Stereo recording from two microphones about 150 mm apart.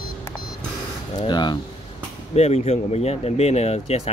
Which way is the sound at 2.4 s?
45° left (ahead or behind).